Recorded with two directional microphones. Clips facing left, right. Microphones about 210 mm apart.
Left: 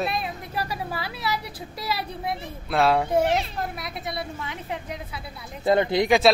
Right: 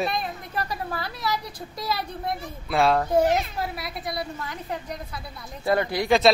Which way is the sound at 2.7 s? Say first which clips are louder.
Even; centre (ahead or behind).